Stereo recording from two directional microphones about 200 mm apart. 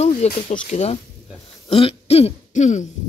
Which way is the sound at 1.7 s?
30° left (ahead or behind).